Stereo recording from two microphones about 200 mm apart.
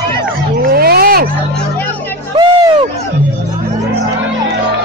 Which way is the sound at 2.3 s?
20° right (ahead or behind).